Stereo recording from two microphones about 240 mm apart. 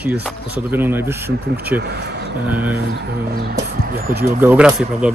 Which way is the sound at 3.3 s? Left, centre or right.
Right.